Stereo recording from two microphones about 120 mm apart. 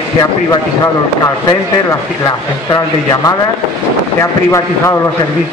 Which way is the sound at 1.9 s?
30° left (ahead or behind).